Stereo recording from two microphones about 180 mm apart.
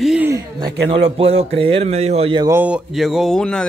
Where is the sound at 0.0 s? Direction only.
5° right (ahead or behind).